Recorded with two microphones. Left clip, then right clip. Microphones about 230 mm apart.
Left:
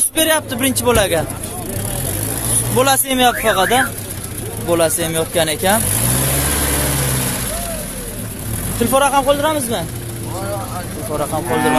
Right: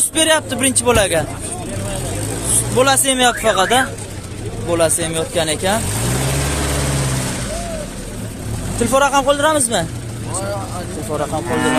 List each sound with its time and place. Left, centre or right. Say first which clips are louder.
0.1 s speech: right 1 dB; centre
2.7 s speech: right 1 dB; centre
3.2 s speech: even; centre
4.6 s speech: left 1 dB; centre
8.7 s speech: even; centre
9.3 s speech: right 1 dB; centre
11.1 s speech: left 1 dB; centre